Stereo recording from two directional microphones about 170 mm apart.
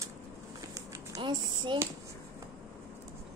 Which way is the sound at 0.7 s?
25° right (ahead or behind).